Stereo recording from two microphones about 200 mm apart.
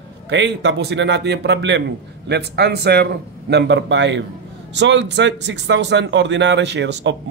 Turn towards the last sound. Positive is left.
turn(degrees=-60)  # may be behind; listen again after turning